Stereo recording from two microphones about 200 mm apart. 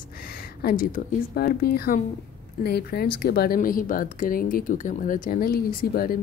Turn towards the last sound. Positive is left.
turn(degrees=45)  # may be behind; listen again after turning